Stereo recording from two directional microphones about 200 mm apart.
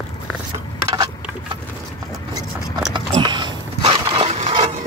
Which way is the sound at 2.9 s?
25° right (ahead or behind).